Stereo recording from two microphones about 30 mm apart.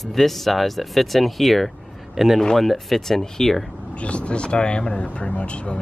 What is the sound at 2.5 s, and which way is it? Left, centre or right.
Speech, centre.